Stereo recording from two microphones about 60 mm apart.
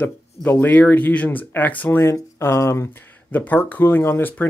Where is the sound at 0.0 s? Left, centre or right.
Left.